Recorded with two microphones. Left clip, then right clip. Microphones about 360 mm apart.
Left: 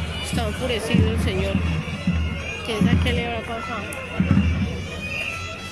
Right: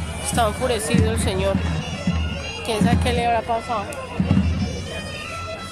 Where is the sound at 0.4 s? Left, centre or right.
Centre.